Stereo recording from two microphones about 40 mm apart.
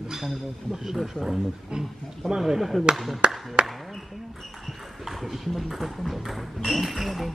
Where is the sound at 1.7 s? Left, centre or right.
Centre.